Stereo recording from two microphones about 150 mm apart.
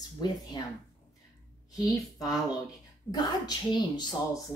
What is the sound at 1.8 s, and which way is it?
Speech, 25° left (ahead or behind).